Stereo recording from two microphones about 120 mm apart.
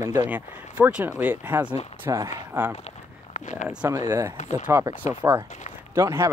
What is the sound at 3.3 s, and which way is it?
Speech, 90° left.